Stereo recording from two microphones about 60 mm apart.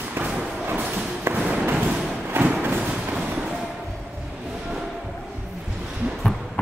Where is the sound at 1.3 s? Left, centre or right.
Right.